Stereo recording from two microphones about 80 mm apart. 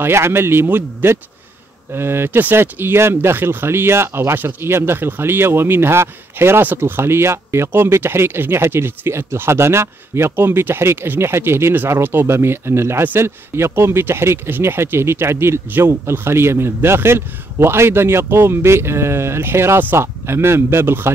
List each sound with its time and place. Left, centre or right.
0.0 s speech: right